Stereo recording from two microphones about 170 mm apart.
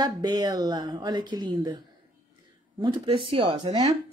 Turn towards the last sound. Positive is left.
turn(degrees=-25)  # may be behind; listen again after turning